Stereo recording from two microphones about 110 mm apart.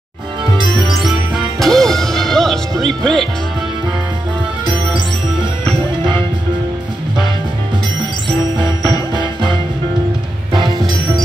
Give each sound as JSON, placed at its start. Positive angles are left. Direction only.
{"t": 0.6, "sound": "music", "side_deg": -45}
{"t": 0.8, "sound": "music", "side_deg": 0}
{"t": 4.6, "sound": "music", "side_deg": -45}
{"t": 8.3, "sound": "music", "side_deg": -45}
{"t": 10.5, "sound": "music", "side_deg": -40}